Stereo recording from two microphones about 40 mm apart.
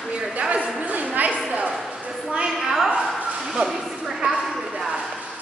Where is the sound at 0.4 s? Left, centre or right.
Right.